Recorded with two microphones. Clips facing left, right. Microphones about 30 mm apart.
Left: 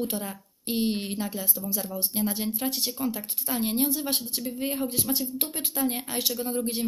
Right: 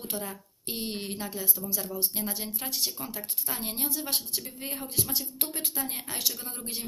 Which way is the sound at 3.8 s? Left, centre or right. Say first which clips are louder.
Left 5 dB; left.